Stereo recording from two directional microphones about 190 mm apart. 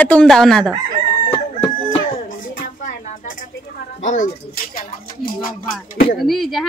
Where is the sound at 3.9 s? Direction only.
40° left (ahead or behind).